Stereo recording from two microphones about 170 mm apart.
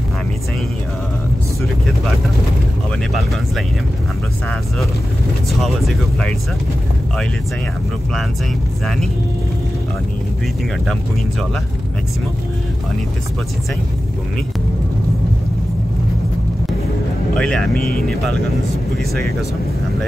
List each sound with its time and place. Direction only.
5.5 s speech: centre (ahead or behind)
17.4 s speech: 5° left (ahead or behind)
17.7 s speech: 60° left (ahead or behind)